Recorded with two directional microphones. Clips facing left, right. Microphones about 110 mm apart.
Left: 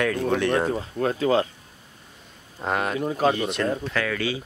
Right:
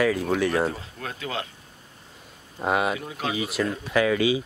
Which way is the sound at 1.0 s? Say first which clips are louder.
Left 12 dB; 35° left (ahead or behind).